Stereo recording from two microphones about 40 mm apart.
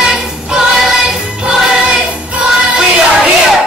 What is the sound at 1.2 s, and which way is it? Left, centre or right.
Music, right.